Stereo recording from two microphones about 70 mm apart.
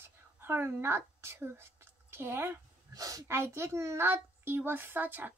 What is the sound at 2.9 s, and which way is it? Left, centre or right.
Speech, right.